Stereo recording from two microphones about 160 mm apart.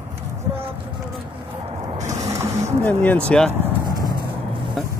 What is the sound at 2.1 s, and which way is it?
Printer, 20° right (ahead or behind).